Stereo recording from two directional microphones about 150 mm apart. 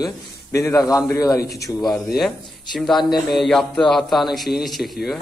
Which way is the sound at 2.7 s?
Centre (ahead or behind).